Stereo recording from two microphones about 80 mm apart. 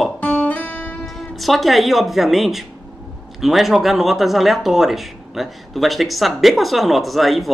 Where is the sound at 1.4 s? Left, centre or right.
Centre.